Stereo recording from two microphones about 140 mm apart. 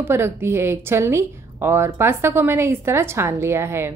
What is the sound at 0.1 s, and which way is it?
Speech, 15° right (ahead or behind).